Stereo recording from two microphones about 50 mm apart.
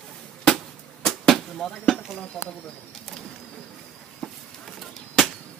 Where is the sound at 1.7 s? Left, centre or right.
Centre.